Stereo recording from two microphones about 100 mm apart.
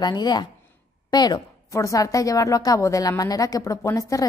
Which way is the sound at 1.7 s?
30° left (ahead or behind).